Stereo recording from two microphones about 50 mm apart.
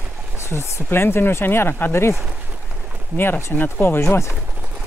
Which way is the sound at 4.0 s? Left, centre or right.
Left.